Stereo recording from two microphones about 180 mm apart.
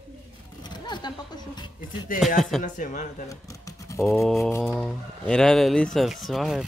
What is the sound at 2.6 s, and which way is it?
Speech, 45° left (ahead or behind).